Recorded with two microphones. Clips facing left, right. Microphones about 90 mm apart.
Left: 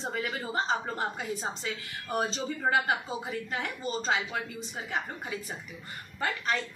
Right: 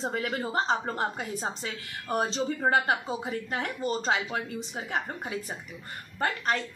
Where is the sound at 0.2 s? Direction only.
45° right (ahead or behind).